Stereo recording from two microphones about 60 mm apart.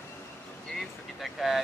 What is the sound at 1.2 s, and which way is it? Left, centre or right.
Speech, centre.